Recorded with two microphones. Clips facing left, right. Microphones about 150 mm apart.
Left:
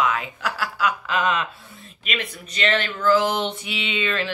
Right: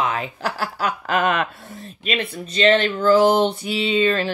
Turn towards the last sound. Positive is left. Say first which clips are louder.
# right 7 dB
turn(degrees=-35)  # may be behind; listen again after turning